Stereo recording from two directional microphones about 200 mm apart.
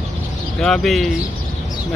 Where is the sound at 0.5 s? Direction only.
5° left (ahead or behind).